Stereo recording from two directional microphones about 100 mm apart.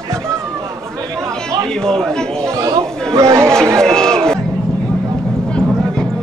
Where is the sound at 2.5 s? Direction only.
35° right (ahead or behind).